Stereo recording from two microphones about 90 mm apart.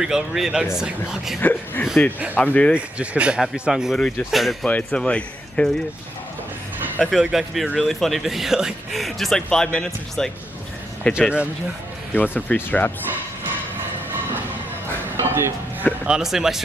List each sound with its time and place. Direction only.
0.0 s speech: 5° right (ahead or behind)
1.4 s speech: 20° left (ahead or behind)
2.7 s speech: 15° right (ahead or behind)
4.6 s speech: 15° left (ahead or behind)
7.0 s speech: centre (ahead or behind)
11.1 s speech: 10° right (ahead or behind)
12.1 s speech: 15° left (ahead or behind)
15.1 s a sound: 30° right (ahead or behind)
16.1 s speech: 5° right (ahead or behind)